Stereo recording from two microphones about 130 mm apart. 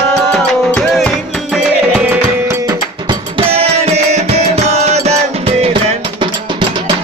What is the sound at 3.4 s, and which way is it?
Music, 55° right (ahead or behind).